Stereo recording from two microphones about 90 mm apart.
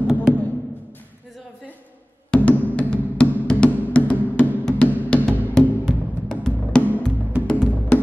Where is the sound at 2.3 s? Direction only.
10° left (ahead or behind).